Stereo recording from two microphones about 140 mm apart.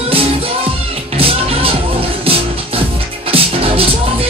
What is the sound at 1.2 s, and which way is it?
Music, 45° right (ahead or behind).